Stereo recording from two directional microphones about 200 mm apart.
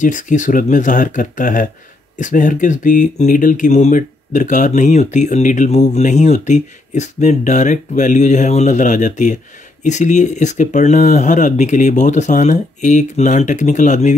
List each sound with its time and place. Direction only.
0.0 s speech: 40° left (ahead or behind)